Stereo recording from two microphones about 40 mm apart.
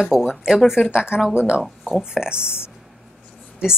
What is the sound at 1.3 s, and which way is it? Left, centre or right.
Speech, left.